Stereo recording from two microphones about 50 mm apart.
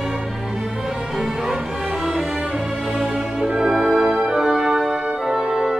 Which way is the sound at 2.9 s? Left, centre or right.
Right.